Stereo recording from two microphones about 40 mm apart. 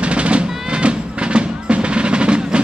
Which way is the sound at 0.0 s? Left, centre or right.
Right.